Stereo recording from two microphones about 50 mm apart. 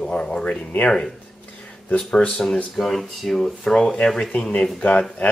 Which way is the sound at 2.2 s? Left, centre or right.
Left.